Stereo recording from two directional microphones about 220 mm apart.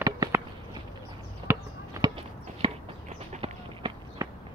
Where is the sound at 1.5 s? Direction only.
20° right (ahead or behind).